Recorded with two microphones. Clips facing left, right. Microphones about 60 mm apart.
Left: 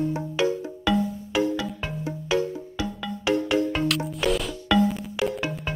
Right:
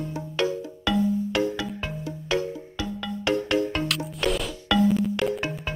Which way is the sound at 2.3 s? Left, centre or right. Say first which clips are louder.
Left 2 dB; centre.